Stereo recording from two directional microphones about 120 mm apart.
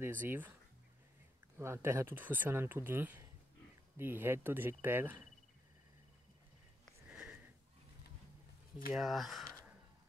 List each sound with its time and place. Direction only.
0.0 s speech: 15° right (ahead or behind)
1.6 s speech: 20° right (ahead or behind)
7.1 s sniff: 10° right (ahead or behind)
8.9 s speech: centre (ahead or behind)